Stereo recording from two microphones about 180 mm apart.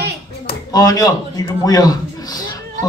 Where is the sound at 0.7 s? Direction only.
20° left (ahead or behind).